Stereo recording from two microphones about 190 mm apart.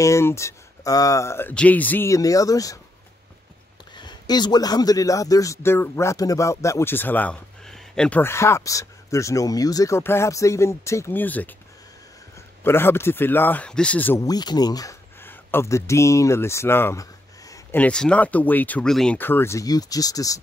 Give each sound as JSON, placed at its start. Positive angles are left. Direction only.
{"t": 0.0, "sound": "a man's voice", "side_deg": 15}
{"t": 3.9, "sound": "a man's voice", "side_deg": 25}